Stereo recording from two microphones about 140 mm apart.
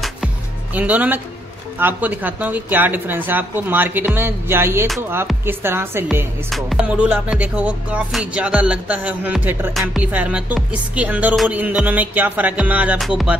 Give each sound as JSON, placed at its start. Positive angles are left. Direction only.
{"t": 0.7, "sound": "speech", "side_deg": -10}
{"t": 6.5, "sound": "speech", "side_deg": -5}